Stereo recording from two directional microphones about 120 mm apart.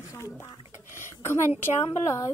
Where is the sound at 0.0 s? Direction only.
25° left (ahead or behind).